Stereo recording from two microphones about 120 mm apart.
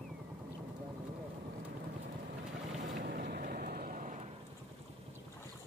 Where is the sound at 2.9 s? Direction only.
90° right.